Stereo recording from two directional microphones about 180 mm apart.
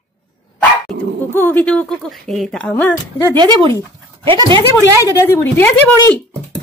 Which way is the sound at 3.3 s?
25° right (ahead or behind).